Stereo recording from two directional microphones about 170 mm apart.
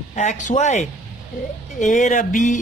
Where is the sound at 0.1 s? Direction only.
45° left (ahead or behind).